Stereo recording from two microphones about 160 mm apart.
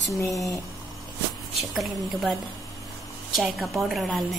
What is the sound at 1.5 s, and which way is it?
Speech, centre (ahead or behind).